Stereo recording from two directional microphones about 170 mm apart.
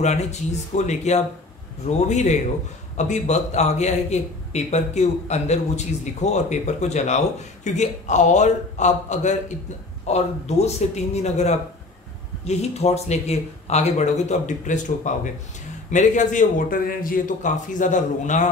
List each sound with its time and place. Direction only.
0.0 s a man's voice: 40° left (ahead or behind)